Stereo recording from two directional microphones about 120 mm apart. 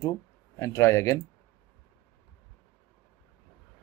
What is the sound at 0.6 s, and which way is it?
Speech, 25° left (ahead or behind).